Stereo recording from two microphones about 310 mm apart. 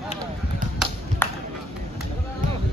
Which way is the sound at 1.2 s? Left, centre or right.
Centre.